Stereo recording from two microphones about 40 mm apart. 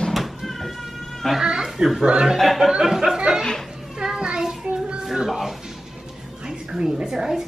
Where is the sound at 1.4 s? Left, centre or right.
Centre.